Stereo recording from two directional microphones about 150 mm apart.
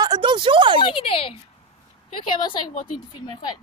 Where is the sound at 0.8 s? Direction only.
35° left (ahead or behind).